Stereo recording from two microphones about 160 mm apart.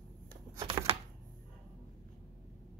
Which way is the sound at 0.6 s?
35° right (ahead or behind).